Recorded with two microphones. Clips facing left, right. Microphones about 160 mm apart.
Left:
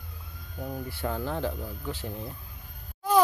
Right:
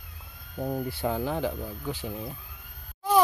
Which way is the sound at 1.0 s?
15° right (ahead or behind).